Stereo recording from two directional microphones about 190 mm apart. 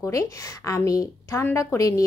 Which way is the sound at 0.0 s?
15° left (ahead or behind).